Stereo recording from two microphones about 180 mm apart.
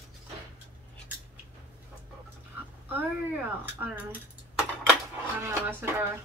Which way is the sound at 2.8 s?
10° right (ahead or behind).